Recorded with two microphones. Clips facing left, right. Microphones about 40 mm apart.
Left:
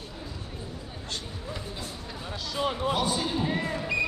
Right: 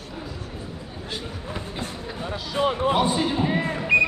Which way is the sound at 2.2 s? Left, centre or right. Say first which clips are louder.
Right 6 dB; right.